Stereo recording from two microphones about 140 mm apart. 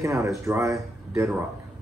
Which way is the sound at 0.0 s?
20° right (ahead or behind).